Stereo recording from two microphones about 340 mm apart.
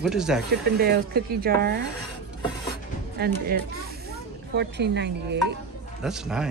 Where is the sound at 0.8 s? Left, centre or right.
Right.